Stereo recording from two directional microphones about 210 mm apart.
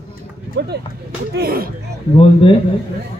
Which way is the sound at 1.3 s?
45° right (ahead or behind).